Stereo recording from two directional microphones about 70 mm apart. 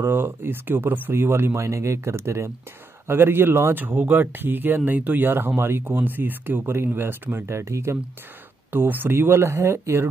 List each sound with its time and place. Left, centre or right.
0.0 s speech: right
8.7 s speech: right